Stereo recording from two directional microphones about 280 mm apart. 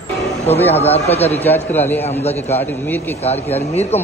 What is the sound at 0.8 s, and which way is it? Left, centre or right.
Speech, left.